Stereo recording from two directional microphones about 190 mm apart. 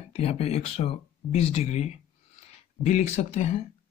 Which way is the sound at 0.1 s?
30° left (ahead or behind).